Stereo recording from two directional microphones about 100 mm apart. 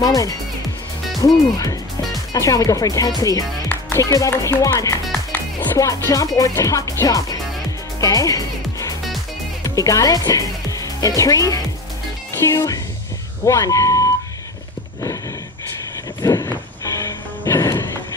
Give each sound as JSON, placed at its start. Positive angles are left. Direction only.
{"t": 0.0, "sound": "speech", "side_deg": 35}
{"t": 6.0, "sound": "speech", "side_deg": 35}
{"t": 8.0, "sound": "music", "side_deg": 35}
{"t": 9.8, "sound": "speech", "side_deg": 35}
{"t": 16.2, "sound": "music", "side_deg": 35}